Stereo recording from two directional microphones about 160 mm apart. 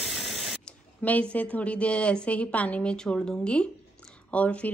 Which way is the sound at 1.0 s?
10° left (ahead or behind).